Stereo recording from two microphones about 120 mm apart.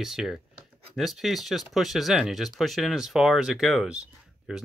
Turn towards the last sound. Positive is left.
turn(degrees=-5)  # may be behind; listen again after turning